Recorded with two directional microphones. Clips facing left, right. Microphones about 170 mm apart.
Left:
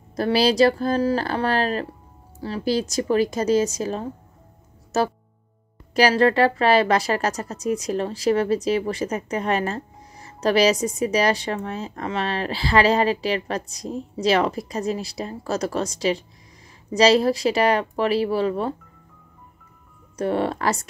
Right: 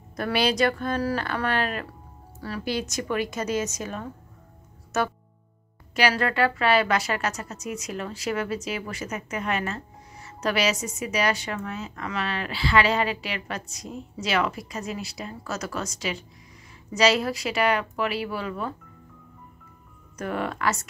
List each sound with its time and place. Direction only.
0.1 s speech: 30° left (ahead or behind)
20.2 s speech: 30° left (ahead or behind)